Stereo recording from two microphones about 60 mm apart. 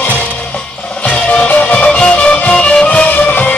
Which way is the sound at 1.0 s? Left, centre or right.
Left.